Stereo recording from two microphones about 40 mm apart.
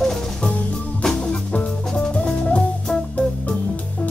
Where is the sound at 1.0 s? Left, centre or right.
Centre.